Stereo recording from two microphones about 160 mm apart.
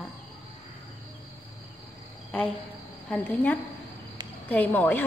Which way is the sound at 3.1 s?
10° left (ahead or behind).